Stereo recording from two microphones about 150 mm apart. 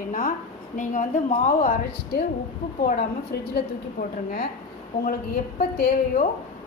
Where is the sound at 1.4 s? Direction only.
75° left (ahead or behind).